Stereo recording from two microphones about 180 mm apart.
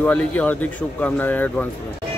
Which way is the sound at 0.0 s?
10° left (ahead or behind).